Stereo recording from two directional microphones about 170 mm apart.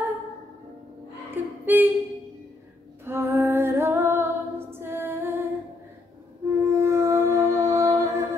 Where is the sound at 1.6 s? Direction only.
10° right (ahead or behind).